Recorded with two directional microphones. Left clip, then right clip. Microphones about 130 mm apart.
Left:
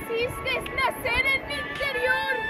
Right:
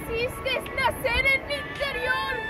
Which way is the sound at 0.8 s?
30° right (ahead or behind).